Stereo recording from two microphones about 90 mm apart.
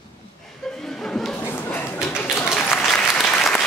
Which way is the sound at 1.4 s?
20° left (ahead or behind).